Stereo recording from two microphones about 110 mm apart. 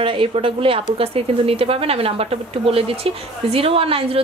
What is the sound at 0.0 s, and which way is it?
A woman's voice, 55° right (ahead or behind).